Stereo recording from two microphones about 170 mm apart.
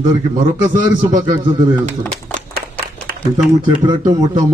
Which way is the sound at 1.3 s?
25° right (ahead or behind).